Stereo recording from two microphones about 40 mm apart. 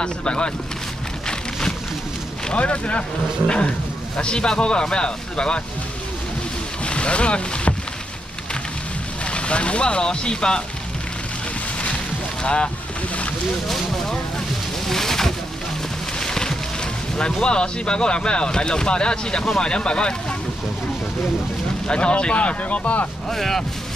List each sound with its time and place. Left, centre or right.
0.0 s speech: left
2.5 s speech: left
6.8 s speech: left
9.2 s speech: left
12.4 s speech: left
14.9 s vehicle: centre
16.2 s music: centre
17.2 s speech: left
21.8 s speech: left
23.3 s speech: centre